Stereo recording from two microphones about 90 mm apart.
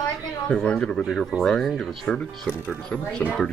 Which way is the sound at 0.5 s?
10° left (ahead or behind).